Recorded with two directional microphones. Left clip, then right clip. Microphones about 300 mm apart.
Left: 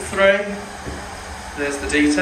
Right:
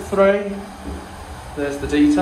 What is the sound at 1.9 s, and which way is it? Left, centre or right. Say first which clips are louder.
Speech: right 1 dB; centre.